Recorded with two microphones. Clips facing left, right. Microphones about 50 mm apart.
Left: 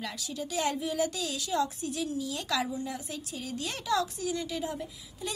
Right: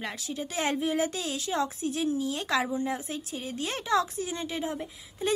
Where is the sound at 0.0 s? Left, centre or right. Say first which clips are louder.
Right 2 dB; right.